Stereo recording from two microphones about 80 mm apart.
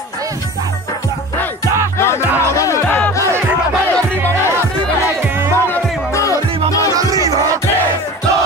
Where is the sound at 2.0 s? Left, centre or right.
Left.